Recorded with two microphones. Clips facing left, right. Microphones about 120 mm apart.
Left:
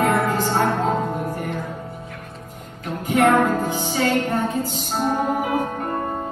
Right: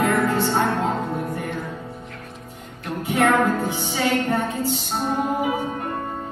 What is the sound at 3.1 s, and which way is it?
Music, 30° left (ahead or behind).